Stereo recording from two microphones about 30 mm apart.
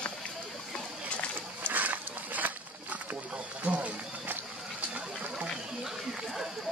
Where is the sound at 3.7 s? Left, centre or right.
Right.